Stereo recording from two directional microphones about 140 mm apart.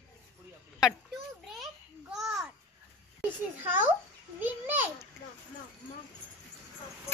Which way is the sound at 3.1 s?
15° right (ahead or behind).